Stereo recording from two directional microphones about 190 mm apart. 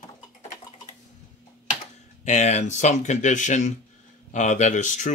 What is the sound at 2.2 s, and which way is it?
Speech, 35° left (ahead or behind).